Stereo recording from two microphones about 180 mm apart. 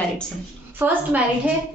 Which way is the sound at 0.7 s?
10° right (ahead or behind).